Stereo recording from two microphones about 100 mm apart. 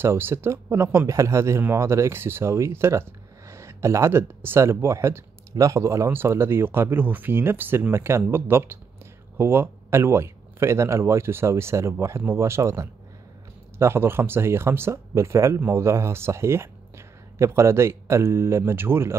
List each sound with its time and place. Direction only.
0.0 s speech: 25° right (ahead or behind)